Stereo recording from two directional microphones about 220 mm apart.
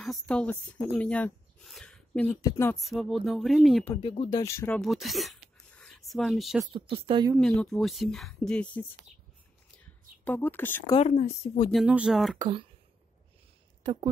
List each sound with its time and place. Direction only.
0.0 s speech: 5° left (ahead or behind)
2.7 s speech: centre (ahead or behind)
3.9 s speech: 20° left (ahead or behind); by 6.6 s centre (ahead or behind)
6.7 s speech: 25° right (ahead or behind)
7.3 s speech: centre (ahead or behind)
9.8 s a sound: 10° left (ahead or behind)
10.9 s speech: 30° left (ahead or behind)
11.7 s speech: 5° right (ahead or behind)
12.4 s speech: 20° right (ahead or behind)